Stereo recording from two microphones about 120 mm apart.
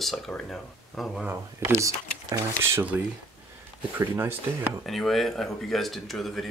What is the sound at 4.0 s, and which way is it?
Speech, 20° right (ahead or behind).